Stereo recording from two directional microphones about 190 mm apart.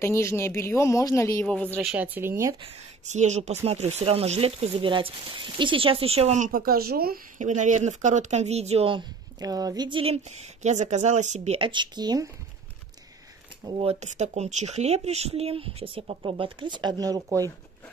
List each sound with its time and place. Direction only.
0.0 s speech: 15° left (ahead or behind); by 2.5 s 15° right (ahead or behind)
2.6 s speech: 40° right (ahead or behind); by 12.3 s 20° right (ahead or behind)
13.7 s speech: 30° right (ahead or behind)